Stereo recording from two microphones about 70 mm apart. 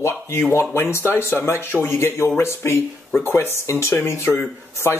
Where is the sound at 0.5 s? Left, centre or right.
Left.